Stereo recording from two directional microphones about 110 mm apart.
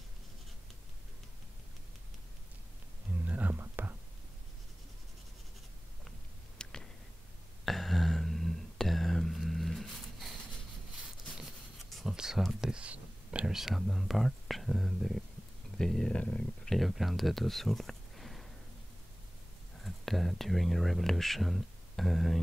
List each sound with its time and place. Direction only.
3.3 s whispering: 15° right (ahead or behind)
6.6 s a sound: 5° left (ahead or behind)
11.9 s speech: centre (ahead or behind)
16.7 s speech: centre (ahead or behind)
19.8 s speech: centre (ahead or behind)